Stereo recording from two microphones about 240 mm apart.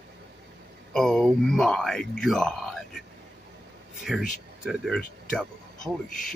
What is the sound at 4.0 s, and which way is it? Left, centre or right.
Speech, centre.